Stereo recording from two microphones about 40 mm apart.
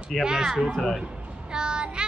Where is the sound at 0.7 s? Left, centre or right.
Centre.